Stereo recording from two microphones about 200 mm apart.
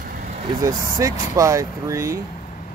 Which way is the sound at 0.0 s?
45° right (ahead or behind).